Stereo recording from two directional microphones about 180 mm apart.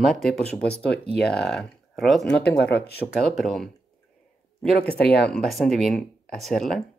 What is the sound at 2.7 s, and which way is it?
Speech, 65° left (ahead or behind).